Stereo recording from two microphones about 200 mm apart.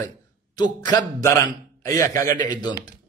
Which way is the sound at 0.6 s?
20° left (ahead or behind).